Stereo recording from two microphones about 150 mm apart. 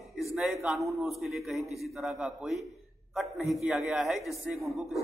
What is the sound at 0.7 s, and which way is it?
Speech, 20° right (ahead or behind).